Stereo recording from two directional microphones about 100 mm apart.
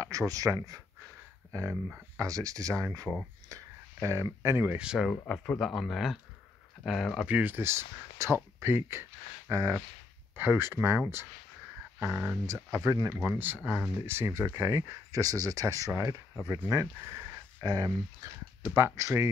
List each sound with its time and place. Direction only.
0.3 s speech: 35° right (ahead or behind)
4.7 s speech: 10° right (ahead or behind); by 9.8 s 30° right (ahead or behind)
10.3 s speech: 20° right (ahead or behind)
13.7 s speech: 20° right (ahead or behind)
17.0 s a sound: 30° right (ahead or behind)
17.6 s speech: 40° right (ahead or behind)
18.8 s speech: 25° right (ahead or behind)